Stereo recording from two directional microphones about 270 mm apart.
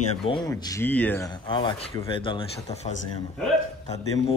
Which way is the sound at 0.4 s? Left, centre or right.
Centre.